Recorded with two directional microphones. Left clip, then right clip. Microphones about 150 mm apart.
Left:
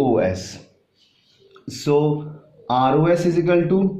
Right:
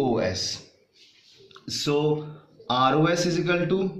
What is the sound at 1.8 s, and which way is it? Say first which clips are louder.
Speech: left 5 dB; 35° left (ahead or behind).